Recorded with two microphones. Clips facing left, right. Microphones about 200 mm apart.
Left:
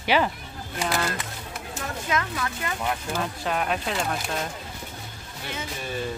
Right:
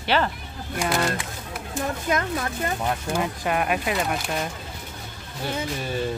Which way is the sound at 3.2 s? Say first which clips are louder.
Right 3 dB; 10° right (ahead or behind).